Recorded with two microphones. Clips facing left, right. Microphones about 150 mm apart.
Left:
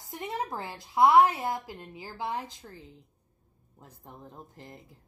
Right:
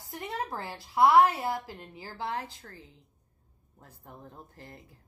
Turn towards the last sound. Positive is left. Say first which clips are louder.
# left 1 dB
turn(degrees=15)  # may be behind; listen again after turning